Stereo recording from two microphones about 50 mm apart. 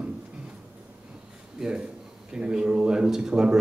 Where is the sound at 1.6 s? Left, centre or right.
Centre.